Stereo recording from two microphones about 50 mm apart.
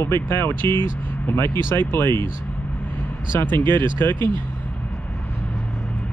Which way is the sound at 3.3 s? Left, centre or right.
Left.